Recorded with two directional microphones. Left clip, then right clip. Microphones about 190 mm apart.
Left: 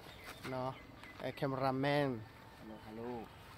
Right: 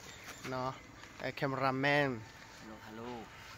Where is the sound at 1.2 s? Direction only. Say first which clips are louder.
Right 3 dB; 20° right (ahead or behind).